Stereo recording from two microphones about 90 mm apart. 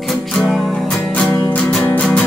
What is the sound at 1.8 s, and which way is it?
Music, 15° left (ahead or behind).